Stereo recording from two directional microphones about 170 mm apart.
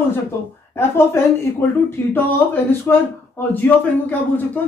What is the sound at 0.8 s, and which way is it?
Speech, 15° left (ahead or behind).